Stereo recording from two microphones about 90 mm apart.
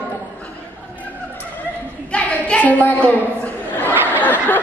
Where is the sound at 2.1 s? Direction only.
10° left (ahead or behind).